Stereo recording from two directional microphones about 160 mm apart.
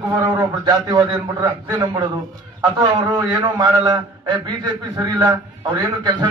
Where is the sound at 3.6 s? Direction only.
25° right (ahead or behind).